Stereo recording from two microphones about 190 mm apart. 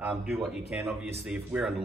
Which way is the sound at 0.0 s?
10° right (ahead or behind).